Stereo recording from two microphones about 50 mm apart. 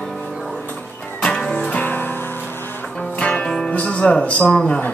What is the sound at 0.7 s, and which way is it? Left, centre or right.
Music, left.